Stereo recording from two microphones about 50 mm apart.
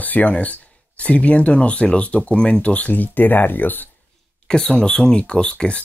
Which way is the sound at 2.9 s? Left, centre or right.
Left.